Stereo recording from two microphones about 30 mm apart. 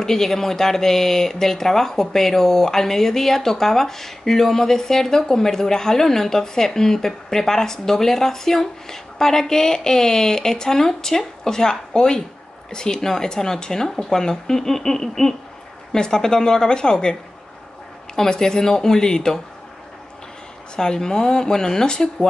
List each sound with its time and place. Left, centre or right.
0.0 s speech: centre
18.3 s speech: left
20.7 s speech: left